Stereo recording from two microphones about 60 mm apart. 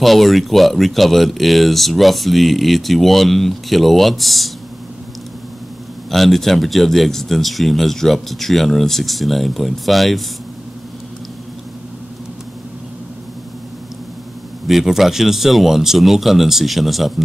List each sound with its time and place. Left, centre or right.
0.0 s speech: centre
6.0 s speech: centre
14.7 s speech: centre